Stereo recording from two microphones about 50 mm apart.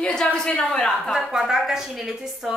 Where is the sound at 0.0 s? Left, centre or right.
Left.